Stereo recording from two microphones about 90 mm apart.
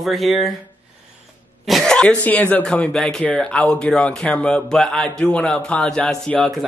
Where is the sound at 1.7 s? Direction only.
5° left (ahead or behind).